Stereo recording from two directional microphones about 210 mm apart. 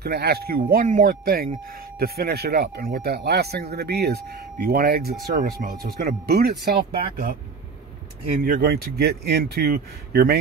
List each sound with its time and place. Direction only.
0.0 s speech: 50° right (ahead or behind)
8.5 s speech: 45° right (ahead or behind)